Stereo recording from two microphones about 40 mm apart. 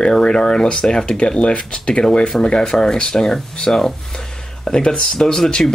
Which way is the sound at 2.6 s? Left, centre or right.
Centre.